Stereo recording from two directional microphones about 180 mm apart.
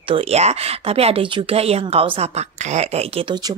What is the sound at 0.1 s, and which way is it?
Speech, 35° right (ahead or behind).